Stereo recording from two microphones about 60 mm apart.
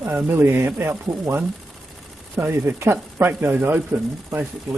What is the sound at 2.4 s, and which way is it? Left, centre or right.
Speech, right.